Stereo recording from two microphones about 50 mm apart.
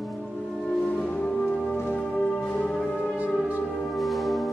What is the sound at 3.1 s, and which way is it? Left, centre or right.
Music, right.